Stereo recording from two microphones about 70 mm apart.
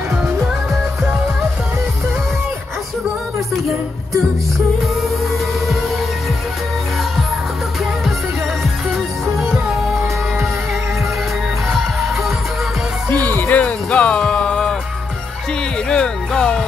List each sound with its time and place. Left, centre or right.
9.4 s music: centre
13.1 s music: left; by 14.8 s centre
15.9 s music: centre